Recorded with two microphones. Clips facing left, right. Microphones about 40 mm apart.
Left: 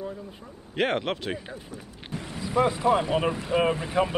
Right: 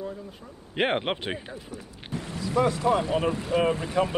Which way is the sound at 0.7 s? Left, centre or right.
Centre.